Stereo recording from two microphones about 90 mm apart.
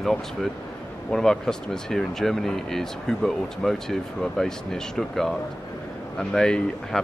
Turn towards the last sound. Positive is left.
turn(degrees=5)  # may be behind; listen again after turning